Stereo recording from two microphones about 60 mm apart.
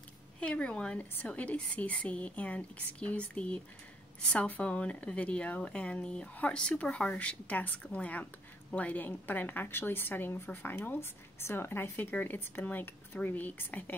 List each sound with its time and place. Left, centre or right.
0.4 s a woman's voice: centre